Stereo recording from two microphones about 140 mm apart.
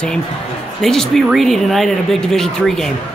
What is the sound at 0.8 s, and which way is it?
Speech, 5° left (ahead or behind).